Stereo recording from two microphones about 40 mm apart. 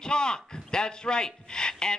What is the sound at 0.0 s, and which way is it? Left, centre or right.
A man's voice, centre.